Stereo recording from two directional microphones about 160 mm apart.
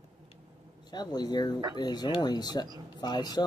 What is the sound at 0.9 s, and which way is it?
Speech, 25° left (ahead or behind).